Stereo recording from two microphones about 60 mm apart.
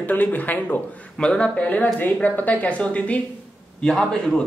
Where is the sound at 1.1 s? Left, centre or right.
Centre.